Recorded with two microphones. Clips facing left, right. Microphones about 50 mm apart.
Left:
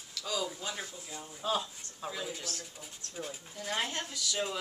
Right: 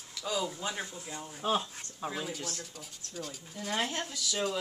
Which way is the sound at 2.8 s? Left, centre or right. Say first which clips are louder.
Even; centre.